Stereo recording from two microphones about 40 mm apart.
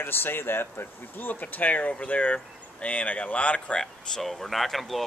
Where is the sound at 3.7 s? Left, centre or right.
Centre.